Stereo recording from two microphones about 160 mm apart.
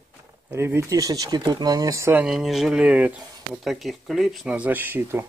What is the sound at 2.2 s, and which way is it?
Speech, centre (ahead or behind).